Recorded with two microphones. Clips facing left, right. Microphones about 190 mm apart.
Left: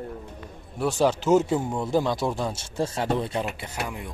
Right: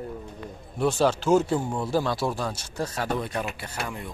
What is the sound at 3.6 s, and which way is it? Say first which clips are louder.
Speech: left 1 dB; 15° left (ahead or behind).